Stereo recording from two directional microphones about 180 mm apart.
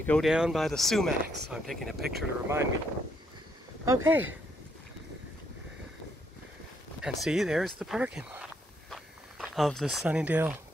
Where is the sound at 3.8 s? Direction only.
15° right (ahead or behind).